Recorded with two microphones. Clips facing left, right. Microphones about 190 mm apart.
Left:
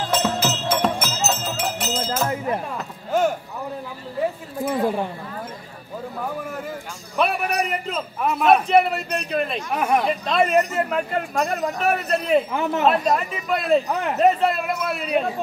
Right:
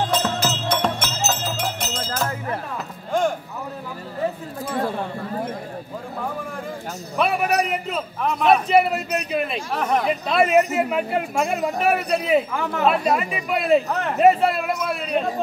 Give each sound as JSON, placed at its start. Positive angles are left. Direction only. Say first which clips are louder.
{"t": 0.1, "sound": "music", "louder": "left 1 dB", "side_deg": 0}
{"t": 2.2, "sound": "music", "louder": "left 3 dB", "side_deg": 15}
{"t": 3.1, "sound": "a sound", "louder": "left 1 dB", "side_deg": 5}
{"t": 7.2, "sound": "a man's voice", "louder": "right 1 dB", "side_deg": 0}
{"t": 9.8, "sound": "speech", "louder": "left 1 dB", "side_deg": 10}
{"t": 10.0, "sound": "a man's voice", "louder": "right 1 dB", "side_deg": -5}
{"t": 12.5, "sound": "speech", "louder": "left 2 dB", "side_deg": 20}
{"t": 12.8, "sound": "a man's voice", "louder": "right 1 dB", "side_deg": -5}